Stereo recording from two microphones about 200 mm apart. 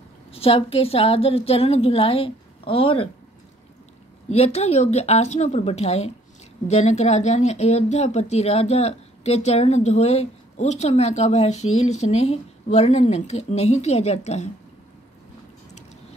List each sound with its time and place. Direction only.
0.3 s a woman's voice: 30° left (ahead or behind)
4.3 s a woman's voice: 30° left (ahead or behind)